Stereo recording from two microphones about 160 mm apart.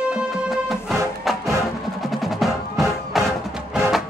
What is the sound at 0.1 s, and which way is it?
Music, 5° right (ahead or behind).